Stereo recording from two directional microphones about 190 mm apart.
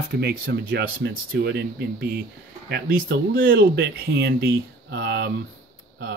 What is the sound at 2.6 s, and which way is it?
Speech, 55° right (ahead or behind).